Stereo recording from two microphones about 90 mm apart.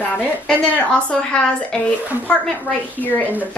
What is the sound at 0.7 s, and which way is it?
A woman's voice, 15° left (ahead or behind).